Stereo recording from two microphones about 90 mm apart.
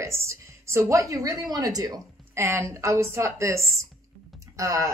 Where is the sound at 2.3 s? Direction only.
30° right (ahead or behind).